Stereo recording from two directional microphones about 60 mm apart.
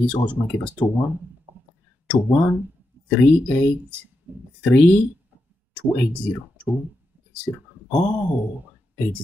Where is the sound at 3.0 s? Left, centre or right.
Left.